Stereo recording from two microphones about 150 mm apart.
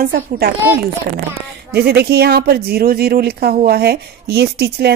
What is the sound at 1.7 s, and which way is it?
Speech, 90° right.